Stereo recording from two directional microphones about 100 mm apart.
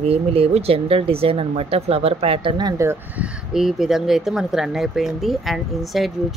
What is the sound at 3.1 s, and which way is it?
Speech, 10° right (ahead or behind).